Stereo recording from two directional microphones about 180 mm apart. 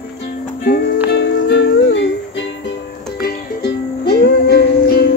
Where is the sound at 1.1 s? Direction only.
75° left (ahead or behind).